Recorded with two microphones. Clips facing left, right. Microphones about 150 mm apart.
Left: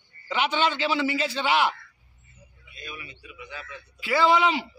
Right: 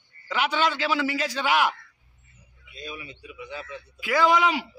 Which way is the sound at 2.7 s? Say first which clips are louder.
Right 3 dB; 30° right (ahead or behind).